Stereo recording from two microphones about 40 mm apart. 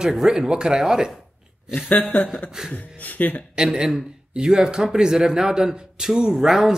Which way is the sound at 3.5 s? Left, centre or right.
Centre.